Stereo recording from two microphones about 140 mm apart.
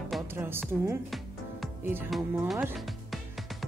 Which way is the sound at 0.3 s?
15° right (ahead or behind).